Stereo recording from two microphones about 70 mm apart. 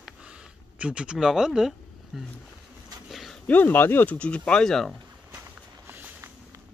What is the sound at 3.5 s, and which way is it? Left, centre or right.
Speech, left.